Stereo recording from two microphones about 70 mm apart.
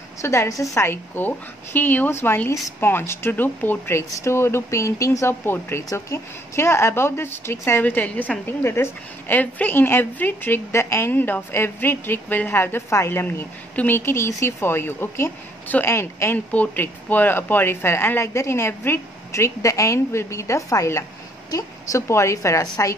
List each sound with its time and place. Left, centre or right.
0.2 s a woman's voice: left
0.8 s speech: left
5.4 s speech: left
7.8 s speech: left
8.5 s speech: left
9.3 s speech: left
16.5 s a woman's voice: left